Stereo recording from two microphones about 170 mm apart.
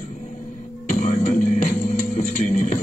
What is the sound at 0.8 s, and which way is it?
Music, 50° left (ahead or behind).